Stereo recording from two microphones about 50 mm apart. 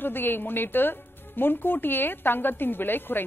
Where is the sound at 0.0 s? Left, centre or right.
Left.